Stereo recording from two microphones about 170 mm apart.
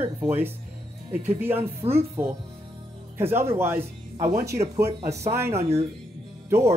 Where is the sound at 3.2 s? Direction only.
15° right (ahead or behind).